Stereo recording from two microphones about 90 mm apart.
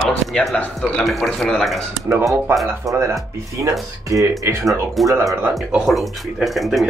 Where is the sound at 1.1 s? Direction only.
Centre (ahead or behind).